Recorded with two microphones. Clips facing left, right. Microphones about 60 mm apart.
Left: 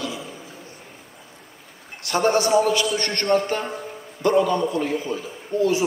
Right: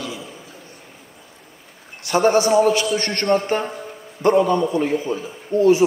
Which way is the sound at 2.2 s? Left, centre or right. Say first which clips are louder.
Right 3 dB; centre.